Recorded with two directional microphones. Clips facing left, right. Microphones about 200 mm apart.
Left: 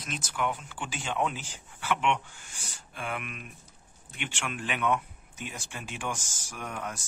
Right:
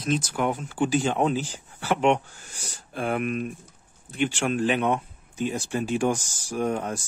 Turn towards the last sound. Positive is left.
turn(degrees=-35)  # may be behind; listen again after turning